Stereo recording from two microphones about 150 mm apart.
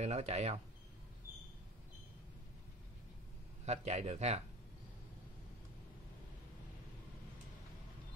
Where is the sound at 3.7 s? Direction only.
45° right (ahead or behind).